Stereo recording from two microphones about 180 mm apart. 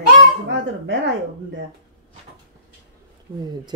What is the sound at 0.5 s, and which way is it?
Speech, 75° right (ahead or behind).